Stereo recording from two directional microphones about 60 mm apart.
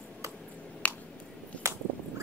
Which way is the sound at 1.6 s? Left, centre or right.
Right.